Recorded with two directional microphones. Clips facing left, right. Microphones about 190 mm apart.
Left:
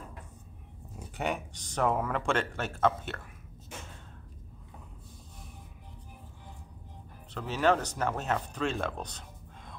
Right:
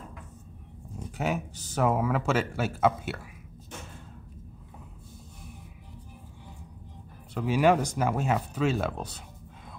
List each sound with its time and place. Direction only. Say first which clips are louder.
0.9 s speech: right 3 dB; centre (ahead or behind)
7.3 s speech: right 4 dB; 10° right (ahead or behind)